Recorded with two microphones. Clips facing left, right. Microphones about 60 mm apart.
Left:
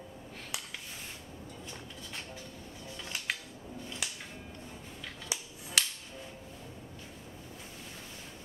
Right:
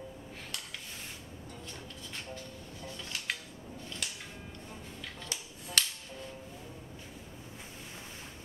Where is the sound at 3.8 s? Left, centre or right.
Centre.